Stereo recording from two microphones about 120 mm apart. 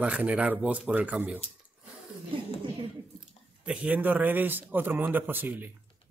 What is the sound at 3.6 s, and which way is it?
Speech, 10° right (ahead or behind).